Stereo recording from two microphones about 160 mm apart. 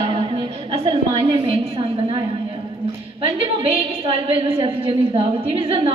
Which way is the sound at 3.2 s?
35° right (ahead or behind).